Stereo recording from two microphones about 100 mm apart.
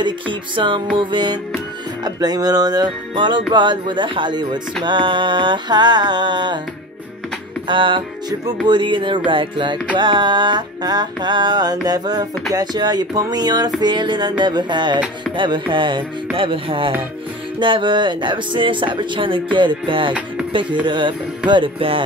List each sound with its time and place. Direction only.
0.0 s music: 55° right (ahead or behind)
7.6 s speech: 55° right (ahead or behind)
9.9 s music: 50° right (ahead or behind)
16.3 s speech: 60° right (ahead or behind)
20.8 s music: 55° right (ahead or behind)
21.5 s speech: 60° right (ahead or behind)